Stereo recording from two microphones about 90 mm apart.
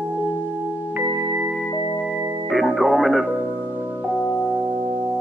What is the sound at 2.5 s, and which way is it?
Music, centre (ahead or behind).